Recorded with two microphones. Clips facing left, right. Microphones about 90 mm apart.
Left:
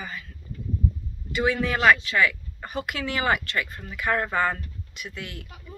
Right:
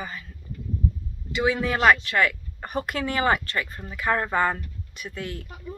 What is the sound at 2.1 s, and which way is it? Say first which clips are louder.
Speech: even; 45° right (ahead or behind).